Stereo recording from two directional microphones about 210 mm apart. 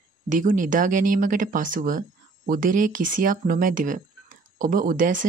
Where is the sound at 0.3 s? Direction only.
40° right (ahead or behind).